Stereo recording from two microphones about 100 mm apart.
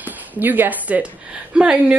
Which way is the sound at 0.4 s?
20° right (ahead or behind).